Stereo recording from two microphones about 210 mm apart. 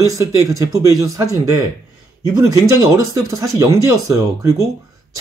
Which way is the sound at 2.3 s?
15° right (ahead or behind).